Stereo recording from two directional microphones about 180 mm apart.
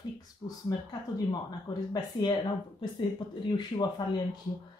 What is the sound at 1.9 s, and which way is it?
Speech, 25° left (ahead or behind).